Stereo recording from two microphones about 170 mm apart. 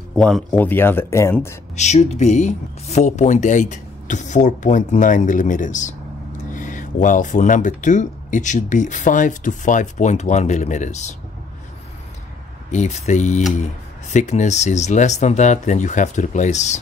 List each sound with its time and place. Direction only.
0.1 s speech: centre (ahead or behind); by 1.6 s 15° left (ahead or behind)
1.8 s speech: 40° left (ahead or behind)
12.7 s speech: 40° left (ahead or behind)